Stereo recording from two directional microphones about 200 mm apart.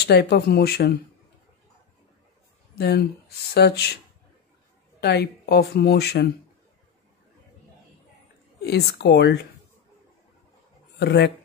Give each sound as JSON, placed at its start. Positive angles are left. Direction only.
{"t": 0.0, "sound": "speech", "side_deg": 55}
{"t": 2.8, "sound": "speech", "side_deg": 55}
{"t": 5.0, "sound": "speech", "side_deg": 55}
{"t": 8.5, "sound": "speech", "side_deg": 55}
{"t": 11.0, "sound": "speech", "side_deg": 55}